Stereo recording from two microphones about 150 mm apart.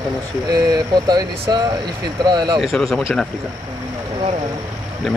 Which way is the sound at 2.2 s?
30° right (ahead or behind).